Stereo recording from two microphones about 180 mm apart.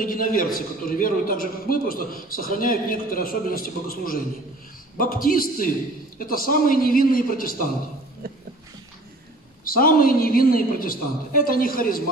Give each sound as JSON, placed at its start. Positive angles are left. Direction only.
{"t": 0.0, "sound": "a man's voice", "side_deg": 50}
{"t": 8.2, "sound": "a sound", "side_deg": -55}
{"t": 9.7, "sound": "a man's voice", "side_deg": 50}